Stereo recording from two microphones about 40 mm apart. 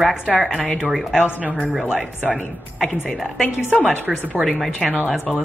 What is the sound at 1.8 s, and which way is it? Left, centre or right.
Speech, right.